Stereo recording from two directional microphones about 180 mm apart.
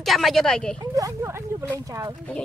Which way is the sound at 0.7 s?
20° right (ahead or behind).